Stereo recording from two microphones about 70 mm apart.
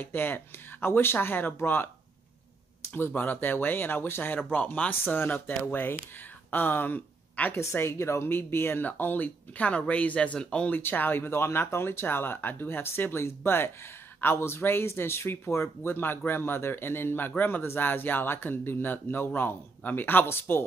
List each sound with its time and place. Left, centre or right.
0.0 s speech: left
2.8 s a sound: left
3.2 s speech: left
7.5 s speech: left; by 10.7 s centre
10.7 s speech: left